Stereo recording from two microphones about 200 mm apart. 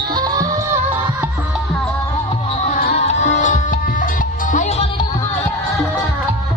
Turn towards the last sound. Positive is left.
turn(degrees=35)  # may be behind; listen again after turning